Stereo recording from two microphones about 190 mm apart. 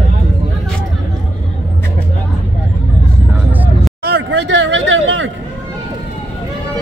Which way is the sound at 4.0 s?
65° right (ahead or behind).